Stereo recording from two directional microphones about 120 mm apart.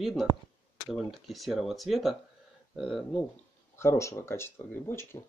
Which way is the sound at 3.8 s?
25° left (ahead or behind).